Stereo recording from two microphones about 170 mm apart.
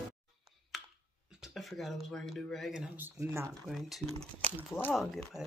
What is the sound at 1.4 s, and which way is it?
Speech, centre (ahead or behind).